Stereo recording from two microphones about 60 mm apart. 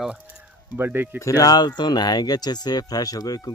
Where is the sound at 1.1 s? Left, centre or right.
Left.